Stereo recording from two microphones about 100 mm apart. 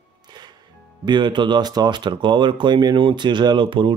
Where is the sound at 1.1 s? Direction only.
50° right (ahead or behind).